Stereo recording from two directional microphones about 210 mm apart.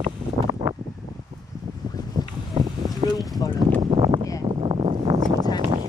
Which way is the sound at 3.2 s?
15° left (ahead or behind).